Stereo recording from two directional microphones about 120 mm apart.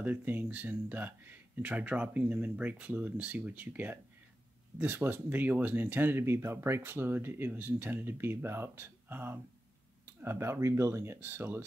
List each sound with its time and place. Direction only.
0.0 s speech: 15° right (ahead or behind)